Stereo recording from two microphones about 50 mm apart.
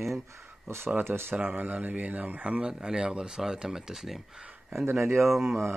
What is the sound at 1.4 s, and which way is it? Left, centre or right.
Speech, right.